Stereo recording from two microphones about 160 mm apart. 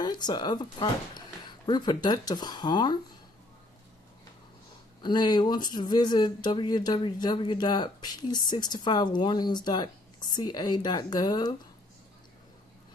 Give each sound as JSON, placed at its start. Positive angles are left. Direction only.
{"t": 0.0, "sound": "speech", "side_deg": 25}
{"t": 5.0, "sound": "speech", "side_deg": 25}